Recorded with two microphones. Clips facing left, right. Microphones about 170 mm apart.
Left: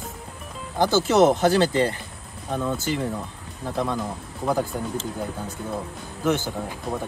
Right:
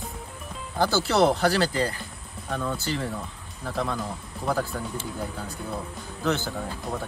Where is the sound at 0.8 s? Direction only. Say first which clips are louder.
Left 4 dB; 20° left (ahead or behind).